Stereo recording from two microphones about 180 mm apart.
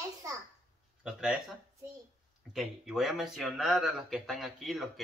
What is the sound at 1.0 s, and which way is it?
Speech, 5° right (ahead or behind).